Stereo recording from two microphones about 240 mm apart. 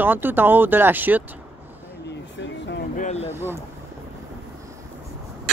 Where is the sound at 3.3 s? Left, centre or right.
Centre.